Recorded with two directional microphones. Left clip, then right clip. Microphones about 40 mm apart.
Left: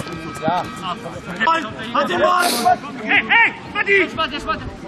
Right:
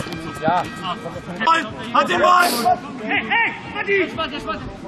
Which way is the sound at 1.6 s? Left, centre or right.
Left.